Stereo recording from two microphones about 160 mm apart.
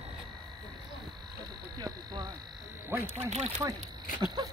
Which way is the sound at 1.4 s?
25° right (ahead or behind).